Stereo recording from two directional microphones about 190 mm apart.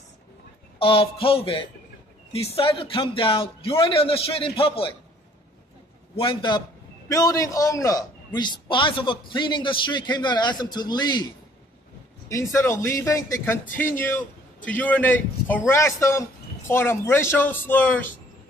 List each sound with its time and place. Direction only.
0.7 s a man's voice: 30° left (ahead or behind)
6.1 s a man's voice: 25° left (ahead or behind)
12.3 s a man's voice: 15° left (ahead or behind)